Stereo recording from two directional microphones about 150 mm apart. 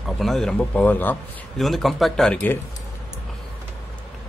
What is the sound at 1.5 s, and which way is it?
Speech, centre (ahead or behind).